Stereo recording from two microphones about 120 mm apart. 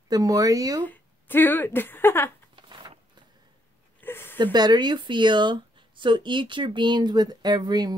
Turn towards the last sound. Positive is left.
turn(degrees=-35)  # may be behind; listen again after turning